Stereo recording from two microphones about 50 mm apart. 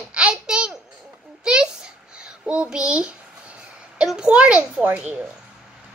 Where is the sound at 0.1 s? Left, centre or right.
Centre.